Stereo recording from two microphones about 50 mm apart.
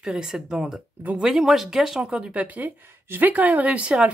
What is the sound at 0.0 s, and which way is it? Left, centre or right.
Speech, centre.